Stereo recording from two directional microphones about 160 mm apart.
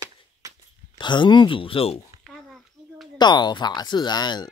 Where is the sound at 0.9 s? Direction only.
30° left (ahead or behind).